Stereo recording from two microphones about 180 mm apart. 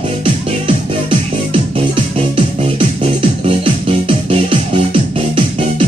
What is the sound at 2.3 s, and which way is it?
Music, 30° right (ahead or behind).